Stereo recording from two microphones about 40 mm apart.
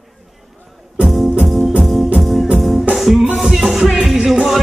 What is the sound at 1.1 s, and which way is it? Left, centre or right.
Music, centre.